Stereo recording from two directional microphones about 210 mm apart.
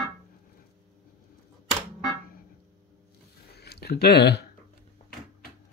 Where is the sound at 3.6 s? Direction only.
50° left (ahead or behind).